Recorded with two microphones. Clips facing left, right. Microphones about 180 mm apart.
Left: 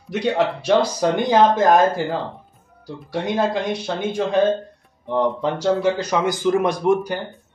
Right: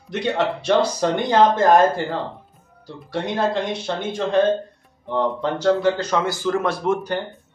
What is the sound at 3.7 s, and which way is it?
Speech, 10° left (ahead or behind).